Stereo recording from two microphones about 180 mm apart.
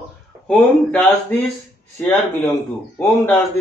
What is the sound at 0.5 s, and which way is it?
A man's voice, 10° left (ahead or behind).